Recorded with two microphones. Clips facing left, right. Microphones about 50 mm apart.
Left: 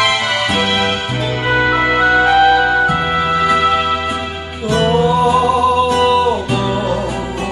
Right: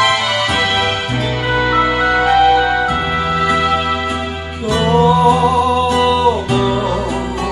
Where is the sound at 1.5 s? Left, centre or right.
Left.